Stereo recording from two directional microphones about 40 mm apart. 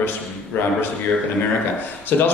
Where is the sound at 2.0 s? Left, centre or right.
Left.